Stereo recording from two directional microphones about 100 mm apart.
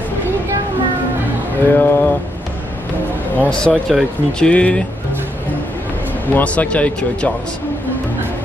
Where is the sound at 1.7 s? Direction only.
20° left (ahead or behind).